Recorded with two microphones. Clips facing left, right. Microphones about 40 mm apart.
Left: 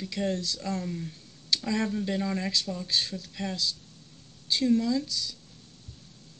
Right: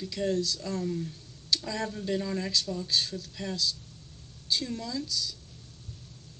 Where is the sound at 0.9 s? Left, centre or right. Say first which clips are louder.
Right 2 dB; centre.